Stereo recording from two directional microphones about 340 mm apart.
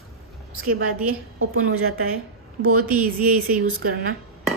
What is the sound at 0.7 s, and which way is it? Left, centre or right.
A woman's voice, right.